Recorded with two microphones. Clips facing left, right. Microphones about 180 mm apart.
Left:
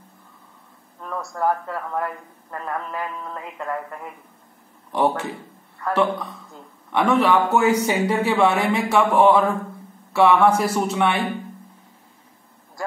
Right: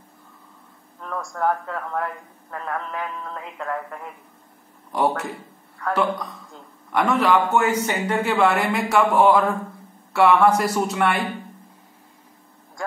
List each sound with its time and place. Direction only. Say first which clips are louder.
1.0 s a man's voice: left 1 dB; 5° left (ahead or behind)